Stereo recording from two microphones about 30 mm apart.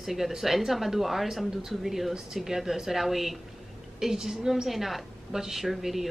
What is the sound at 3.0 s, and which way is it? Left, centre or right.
Speech, centre.